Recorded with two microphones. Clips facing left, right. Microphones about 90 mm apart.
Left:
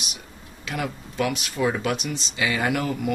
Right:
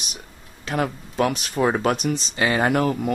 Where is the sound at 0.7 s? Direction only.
40° right (ahead or behind).